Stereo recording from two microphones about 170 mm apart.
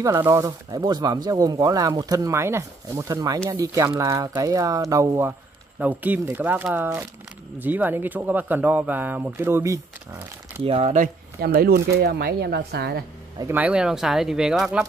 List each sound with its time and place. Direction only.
0.2 s speech: 20° right (ahead or behind)
10.6 s speech: 35° right (ahead or behind)
11.4 s speech: 65° right (ahead or behind)
13.4 s speech: 10° right (ahead or behind)